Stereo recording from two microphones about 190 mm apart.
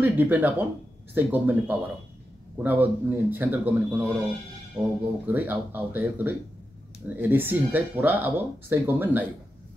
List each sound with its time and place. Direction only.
0.0 s speech: 10° right (ahead or behind)